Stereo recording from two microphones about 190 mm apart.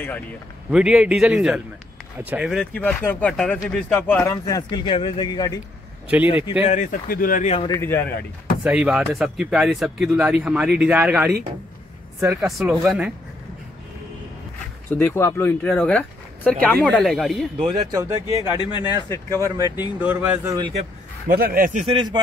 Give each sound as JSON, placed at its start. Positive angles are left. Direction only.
{"t": 0.7, "sound": "speech", "side_deg": -5}
{"t": 2.7, "sound": "a man's voice", "side_deg": 10}
{"t": 6.7, "sound": "speech", "side_deg": 40}
{"t": 7.5, "sound": "a man's voice", "side_deg": 20}
{"t": 8.6, "sound": "speech", "side_deg": -5}
{"t": 14.9, "sound": "speech", "side_deg": 10}
{"t": 17.9, "sound": "speech", "side_deg": -15}
{"t": 18.6, "sound": "a man's voice", "side_deg": 25}
{"t": 19.0, "sound": "speech", "side_deg": 15}
{"t": 20.0, "sound": "speech", "side_deg": -10}
{"t": 21.3, "sound": "a man's voice", "side_deg": -50}
{"t": 21.8, "sound": "speech", "side_deg": -25}